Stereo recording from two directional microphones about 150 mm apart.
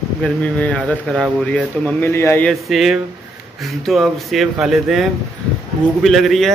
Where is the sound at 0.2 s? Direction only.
10° left (ahead or behind).